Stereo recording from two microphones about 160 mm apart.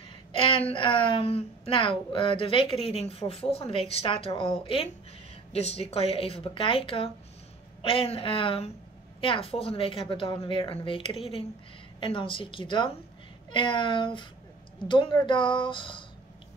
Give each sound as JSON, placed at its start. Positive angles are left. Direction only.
{"t": 0.4, "sound": "a woman's voice", "side_deg": 35}